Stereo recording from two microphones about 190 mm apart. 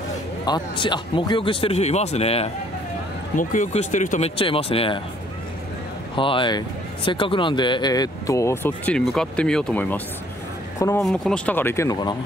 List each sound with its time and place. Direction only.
0.5 s speech: 25° left (ahead or behind)
6.1 s speech: 25° left (ahead or behind)